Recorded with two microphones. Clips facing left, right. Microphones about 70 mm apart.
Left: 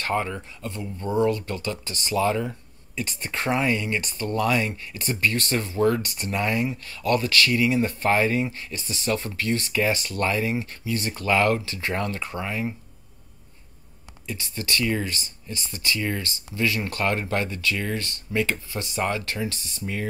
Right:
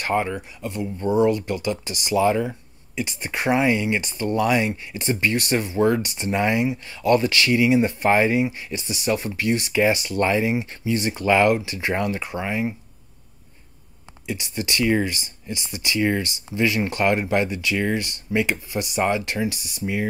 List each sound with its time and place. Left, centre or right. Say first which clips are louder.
0.0 s speech: right 3 dB; centre
14.2 s speech: right 4 dB; right